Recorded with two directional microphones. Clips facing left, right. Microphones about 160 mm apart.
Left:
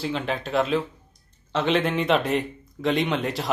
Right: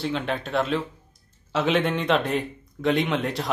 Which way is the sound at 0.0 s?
Centre (ahead or behind).